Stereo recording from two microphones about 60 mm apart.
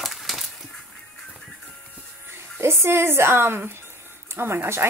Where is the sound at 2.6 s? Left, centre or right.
Right.